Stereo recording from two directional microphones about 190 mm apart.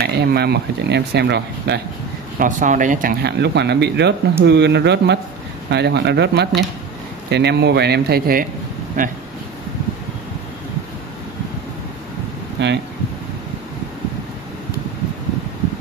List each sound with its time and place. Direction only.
0.0 s speech: 60° right (ahead or behind)
2.3 s speech: 45° right (ahead or behind)
9.0 s speech: 45° right (ahead or behind)
12.6 s speech: 65° right (ahead or behind)